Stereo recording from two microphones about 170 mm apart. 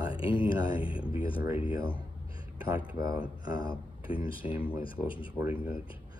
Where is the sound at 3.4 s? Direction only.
20° right (ahead or behind).